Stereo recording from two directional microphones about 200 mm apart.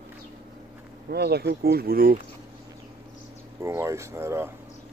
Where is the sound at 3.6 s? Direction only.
15° right (ahead or behind).